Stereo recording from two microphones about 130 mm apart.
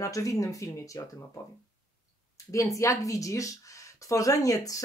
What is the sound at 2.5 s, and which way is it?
Speech, 25° left (ahead or behind).